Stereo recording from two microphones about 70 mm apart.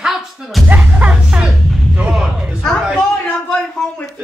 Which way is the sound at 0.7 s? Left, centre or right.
Right.